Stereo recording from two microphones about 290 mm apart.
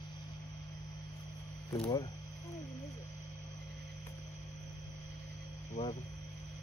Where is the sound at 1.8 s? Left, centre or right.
Centre.